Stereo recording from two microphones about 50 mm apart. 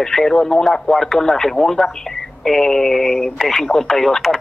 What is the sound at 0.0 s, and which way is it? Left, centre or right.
Speech, centre.